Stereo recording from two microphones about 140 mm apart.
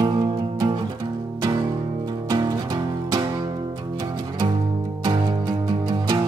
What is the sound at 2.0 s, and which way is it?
Music, 30° right (ahead or behind).